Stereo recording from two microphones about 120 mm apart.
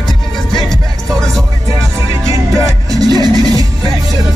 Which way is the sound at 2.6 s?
30° right (ahead or behind).